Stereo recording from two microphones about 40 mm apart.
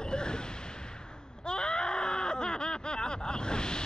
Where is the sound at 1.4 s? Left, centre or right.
Left.